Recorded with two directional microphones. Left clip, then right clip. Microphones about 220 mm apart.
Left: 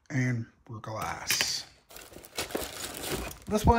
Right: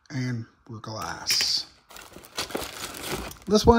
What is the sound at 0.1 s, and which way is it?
Speech, 5° right (ahead or behind).